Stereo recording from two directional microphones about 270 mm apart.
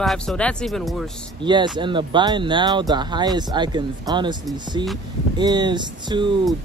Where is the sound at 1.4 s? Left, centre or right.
Centre.